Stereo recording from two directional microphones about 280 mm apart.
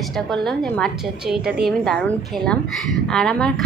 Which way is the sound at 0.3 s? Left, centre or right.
Centre.